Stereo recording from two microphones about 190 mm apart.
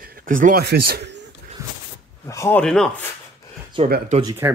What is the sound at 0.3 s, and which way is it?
Speech, 45° right (ahead or behind).